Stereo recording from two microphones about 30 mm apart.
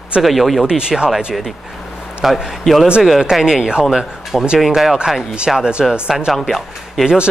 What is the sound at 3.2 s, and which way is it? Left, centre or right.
Speech, centre.